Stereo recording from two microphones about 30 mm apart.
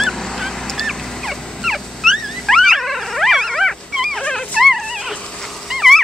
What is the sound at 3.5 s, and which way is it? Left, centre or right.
Dog, centre.